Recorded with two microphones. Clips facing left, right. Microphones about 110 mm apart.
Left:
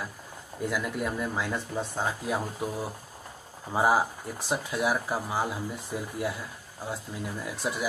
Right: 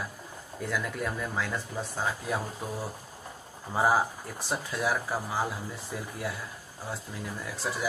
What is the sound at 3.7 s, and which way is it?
Speech, 15° left (ahead or behind).